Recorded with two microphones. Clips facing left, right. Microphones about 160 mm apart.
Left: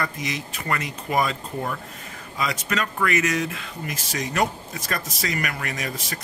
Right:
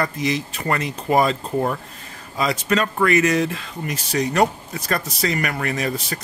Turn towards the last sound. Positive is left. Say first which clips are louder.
# right 7 dB
turn(degrees=-35)  # may be behind; listen again after turning